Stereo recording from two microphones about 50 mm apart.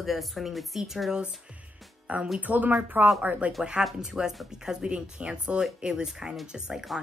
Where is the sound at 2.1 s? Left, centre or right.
Right.